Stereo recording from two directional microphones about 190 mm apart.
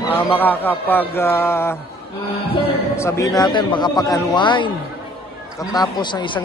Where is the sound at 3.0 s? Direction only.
15° left (ahead or behind).